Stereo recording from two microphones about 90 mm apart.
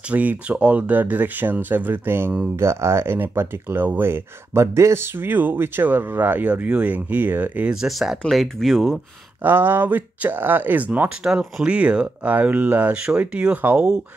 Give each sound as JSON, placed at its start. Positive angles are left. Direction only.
{"t": 0.1, "sound": "speech", "side_deg": -15}
{"t": 7.7, "sound": "speech", "side_deg": -5}
{"t": 9.4, "sound": "speech", "side_deg": -25}